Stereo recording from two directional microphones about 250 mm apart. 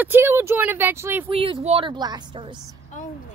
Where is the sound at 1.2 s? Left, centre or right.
Right.